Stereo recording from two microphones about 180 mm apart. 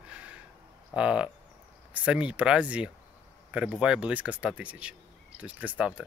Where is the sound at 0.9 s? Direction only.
5° right (ahead or behind).